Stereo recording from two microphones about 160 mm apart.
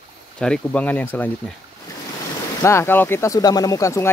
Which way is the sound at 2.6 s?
15° left (ahead or behind).